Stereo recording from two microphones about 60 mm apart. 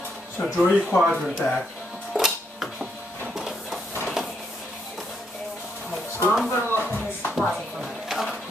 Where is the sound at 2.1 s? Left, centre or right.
Centre.